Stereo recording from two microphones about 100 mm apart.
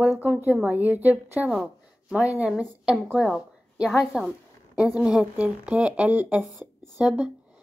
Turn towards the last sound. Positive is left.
turn(degrees=-10)  # may be behind; listen again after turning